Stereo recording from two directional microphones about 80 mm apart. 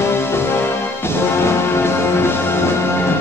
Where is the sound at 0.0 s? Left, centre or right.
Left.